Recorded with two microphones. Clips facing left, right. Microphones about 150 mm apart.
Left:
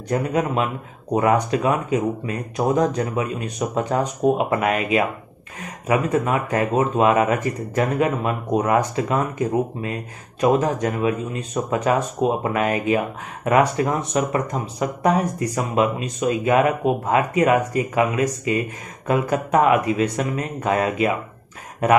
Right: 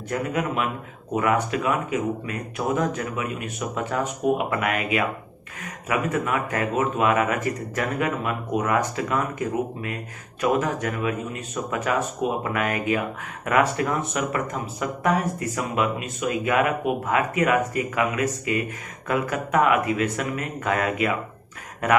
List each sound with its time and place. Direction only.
0.1 s speech: 25° left (ahead or behind)